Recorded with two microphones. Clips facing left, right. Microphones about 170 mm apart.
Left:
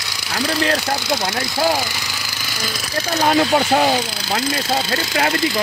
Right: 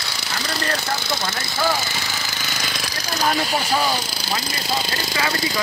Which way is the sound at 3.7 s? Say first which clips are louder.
Left 5 dB; 55° left (ahead or behind).